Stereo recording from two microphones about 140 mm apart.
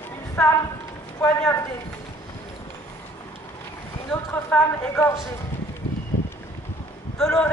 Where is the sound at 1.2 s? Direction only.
15° left (ahead or behind).